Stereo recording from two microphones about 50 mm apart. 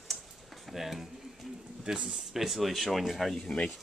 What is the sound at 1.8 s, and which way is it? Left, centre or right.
Speech, right.